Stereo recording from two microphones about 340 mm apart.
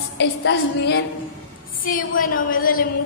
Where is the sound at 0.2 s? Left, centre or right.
Left.